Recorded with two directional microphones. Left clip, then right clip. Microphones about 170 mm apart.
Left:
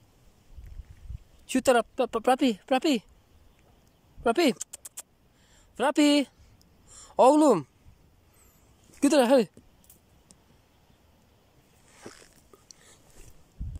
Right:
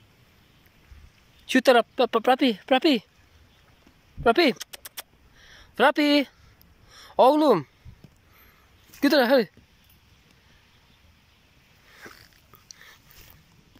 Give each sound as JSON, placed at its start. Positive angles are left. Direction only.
{"t": 1.4, "sound": "speech", "side_deg": 5}
{"t": 4.2, "sound": "a sound", "side_deg": 5}
{"t": 6.9, "sound": "speech", "side_deg": 10}
{"t": 9.0, "sound": "speech", "side_deg": 10}